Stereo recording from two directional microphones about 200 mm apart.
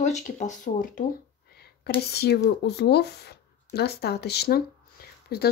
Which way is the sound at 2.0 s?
55° left (ahead or behind).